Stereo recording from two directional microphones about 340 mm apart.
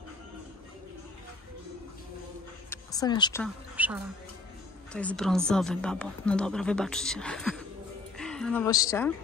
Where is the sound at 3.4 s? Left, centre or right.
Centre.